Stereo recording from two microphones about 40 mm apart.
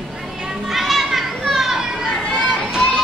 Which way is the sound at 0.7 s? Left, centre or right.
Centre.